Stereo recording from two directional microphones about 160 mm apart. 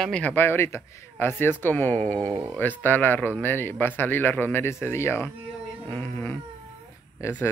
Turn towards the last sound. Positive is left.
turn(degrees=15)  # may be behind; listen again after turning